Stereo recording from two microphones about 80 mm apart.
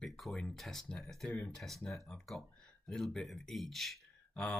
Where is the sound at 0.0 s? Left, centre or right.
Centre.